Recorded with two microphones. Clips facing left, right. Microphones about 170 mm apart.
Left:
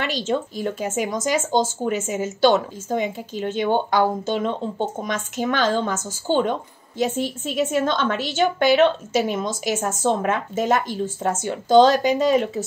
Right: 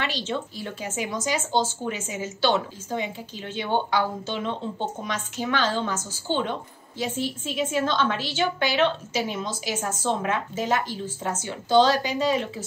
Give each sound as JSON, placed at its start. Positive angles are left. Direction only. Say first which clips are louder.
{"t": 0.0, "sound": "speech", "louder": "left 5 dB", "side_deg": 45}